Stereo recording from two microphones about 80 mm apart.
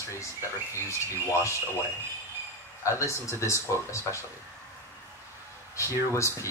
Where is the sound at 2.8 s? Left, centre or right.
Left.